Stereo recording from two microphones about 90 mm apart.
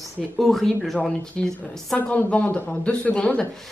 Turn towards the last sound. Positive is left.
turn(degrees=10)  # may be behind; listen again after turning